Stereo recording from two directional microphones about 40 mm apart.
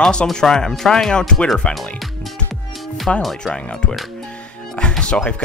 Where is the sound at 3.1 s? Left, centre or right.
Centre.